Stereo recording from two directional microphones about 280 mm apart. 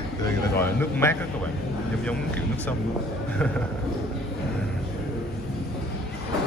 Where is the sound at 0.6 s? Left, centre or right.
Centre.